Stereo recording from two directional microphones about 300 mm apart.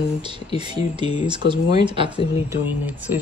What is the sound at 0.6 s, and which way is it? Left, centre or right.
Speech, centre.